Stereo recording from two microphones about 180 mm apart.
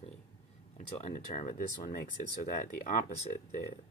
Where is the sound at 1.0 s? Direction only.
45° left (ahead or behind).